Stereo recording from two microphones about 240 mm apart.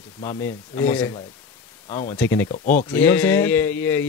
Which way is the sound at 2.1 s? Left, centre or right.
Centre.